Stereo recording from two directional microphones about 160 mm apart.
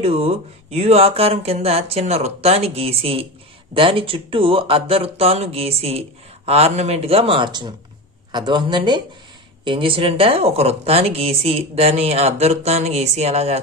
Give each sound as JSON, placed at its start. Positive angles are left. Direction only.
{"t": 0.0, "sound": "speech", "side_deg": -40}